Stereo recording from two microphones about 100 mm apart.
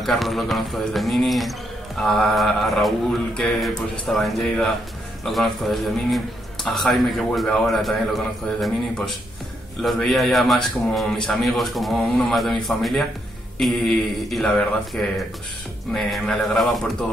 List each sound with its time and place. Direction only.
0.0 s a man's voice: centre (ahead or behind)